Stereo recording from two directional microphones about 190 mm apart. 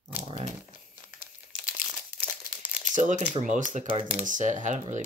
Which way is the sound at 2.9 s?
40° right (ahead or behind).